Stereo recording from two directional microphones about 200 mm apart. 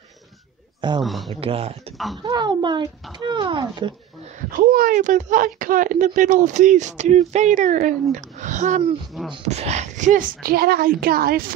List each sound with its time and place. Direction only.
0.7 s a man's voice: 25° right (ahead or behind)
1.0 s a man's voice: centre (ahead or behind)
1.4 s speech: 30° right (ahead or behind)
4.5 s speech: 45° right (ahead or behind)